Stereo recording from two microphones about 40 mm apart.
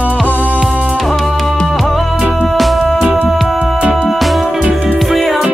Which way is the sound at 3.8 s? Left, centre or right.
Right.